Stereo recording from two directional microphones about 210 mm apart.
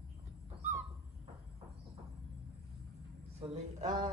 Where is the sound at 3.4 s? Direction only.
30° right (ahead or behind).